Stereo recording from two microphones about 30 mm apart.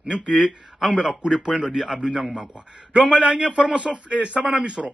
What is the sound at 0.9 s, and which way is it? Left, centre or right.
Speech, right.